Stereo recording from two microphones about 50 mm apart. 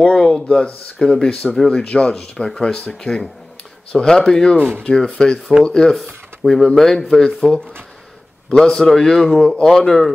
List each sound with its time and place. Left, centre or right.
0.0 s speech: centre
5.9 s speech: centre
8.5 s speech: centre